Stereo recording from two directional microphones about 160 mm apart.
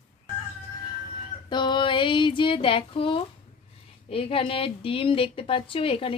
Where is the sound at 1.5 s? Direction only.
30° left (ahead or behind).